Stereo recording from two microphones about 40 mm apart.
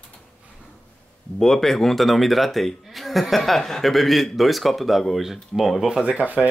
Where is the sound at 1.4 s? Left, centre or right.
Centre.